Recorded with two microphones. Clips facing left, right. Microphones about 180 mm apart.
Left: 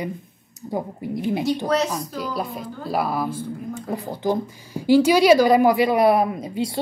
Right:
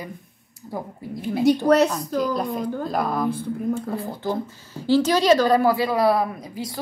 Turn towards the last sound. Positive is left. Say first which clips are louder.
# left 6 dB
turn(degrees=25)  # may be behind; listen again after turning